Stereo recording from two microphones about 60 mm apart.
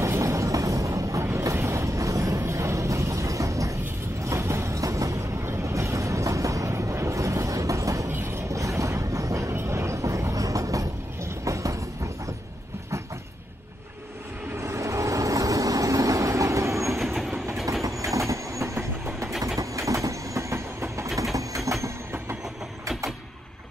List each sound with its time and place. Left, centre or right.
0.0 s vehicle: right
4.2 s vehicle: right
8.1 s a sound: right
8.5 s a sound: right
11.2 s train: right
14.6 s vehicle: right
16.9 s train: centre
18.1 s train: right